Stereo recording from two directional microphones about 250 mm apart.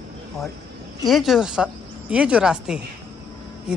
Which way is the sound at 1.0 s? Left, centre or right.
Centre.